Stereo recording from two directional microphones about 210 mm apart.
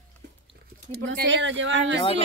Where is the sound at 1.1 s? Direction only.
60° right (ahead or behind).